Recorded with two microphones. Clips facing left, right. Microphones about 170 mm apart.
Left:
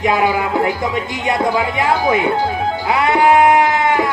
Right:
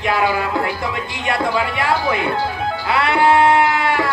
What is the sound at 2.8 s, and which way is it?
Sheep, 20° left (ahead or behind).